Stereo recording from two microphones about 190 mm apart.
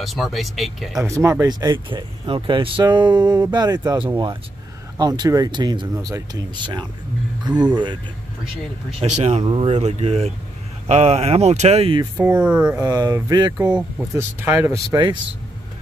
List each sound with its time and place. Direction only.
0.0 s speech: centre (ahead or behind)
1.0 s speech: 15° right (ahead or behind)
9.2 s speech: 30° right (ahead or behind)
12.2 s speech: 5° right (ahead or behind)
12.8 s speech: 20° right (ahead or behind)
13.7 s speech: 10° right (ahead or behind)